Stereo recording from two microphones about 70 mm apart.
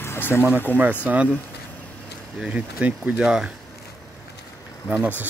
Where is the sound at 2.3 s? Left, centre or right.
Centre.